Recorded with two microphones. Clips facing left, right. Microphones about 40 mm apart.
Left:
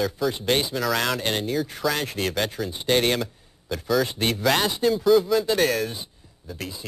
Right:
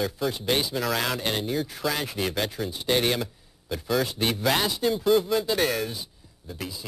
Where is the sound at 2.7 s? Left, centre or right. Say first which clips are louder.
Left 3 dB; centre.